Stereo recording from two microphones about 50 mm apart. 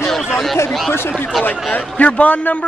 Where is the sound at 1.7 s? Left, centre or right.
Left.